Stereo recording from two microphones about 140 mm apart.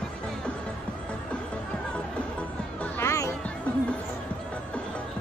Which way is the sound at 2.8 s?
20° left (ahead or behind).